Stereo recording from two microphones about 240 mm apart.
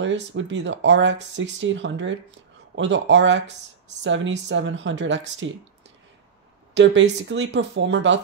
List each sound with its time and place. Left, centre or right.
0.0 s speech: right
6.7 s speech: right